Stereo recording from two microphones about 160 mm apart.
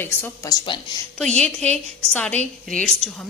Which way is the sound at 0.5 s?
30° left (ahead or behind).